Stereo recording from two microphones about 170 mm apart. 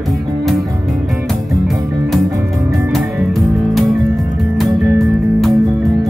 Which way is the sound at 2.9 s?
Centre (ahead or behind).